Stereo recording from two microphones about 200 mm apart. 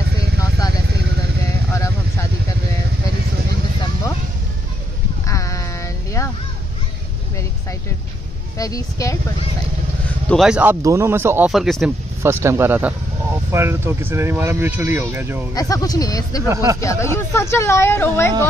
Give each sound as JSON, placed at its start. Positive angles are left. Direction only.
{"t": 1.7, "sound": "vehicle", "side_deg": 15}
{"t": 5.2, "sound": "sheep", "side_deg": 15}
{"t": 8.5, "sound": "speech", "side_deg": 15}
{"t": 10.3, "sound": "speech", "side_deg": -5}
{"t": 12.2, "sound": "speech", "side_deg": -15}
{"t": 15.5, "sound": "speech", "side_deg": 20}